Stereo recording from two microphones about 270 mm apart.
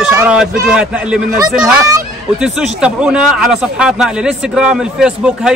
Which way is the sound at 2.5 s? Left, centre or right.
Centre.